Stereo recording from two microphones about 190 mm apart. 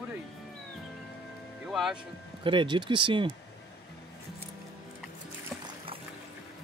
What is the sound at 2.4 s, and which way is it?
Speech, 25° right (ahead or behind).